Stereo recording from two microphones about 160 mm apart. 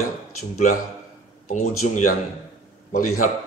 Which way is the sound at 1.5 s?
50° left (ahead or behind).